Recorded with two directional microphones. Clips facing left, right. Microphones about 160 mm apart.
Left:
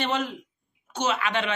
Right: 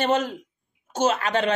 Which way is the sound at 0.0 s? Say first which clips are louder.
Right 5 dB; 45° right (ahead or behind).